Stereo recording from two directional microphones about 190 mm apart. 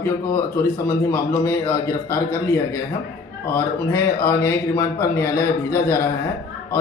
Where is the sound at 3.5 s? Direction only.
15° left (ahead or behind).